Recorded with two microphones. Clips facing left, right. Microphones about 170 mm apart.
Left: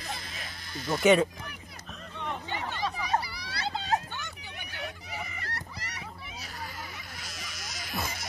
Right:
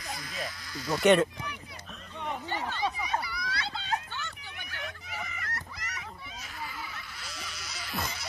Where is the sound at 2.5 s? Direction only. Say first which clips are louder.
Right 1 dB; 15° left (ahead or behind).